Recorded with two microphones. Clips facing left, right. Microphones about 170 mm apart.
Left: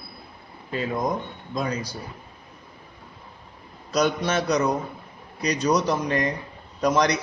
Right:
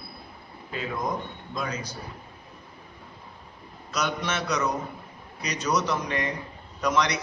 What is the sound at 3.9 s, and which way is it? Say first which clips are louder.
A man's voice: left 6 dB; 35° left (ahead or behind).